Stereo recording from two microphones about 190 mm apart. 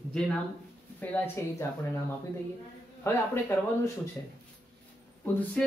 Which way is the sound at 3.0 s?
10° left (ahead or behind).